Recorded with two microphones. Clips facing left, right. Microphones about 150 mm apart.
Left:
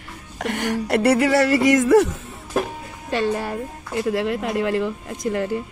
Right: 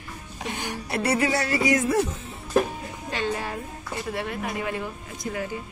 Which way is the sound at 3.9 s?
85° left.